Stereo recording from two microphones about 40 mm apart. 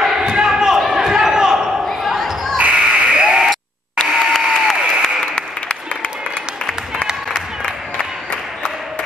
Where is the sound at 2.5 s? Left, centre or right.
Right.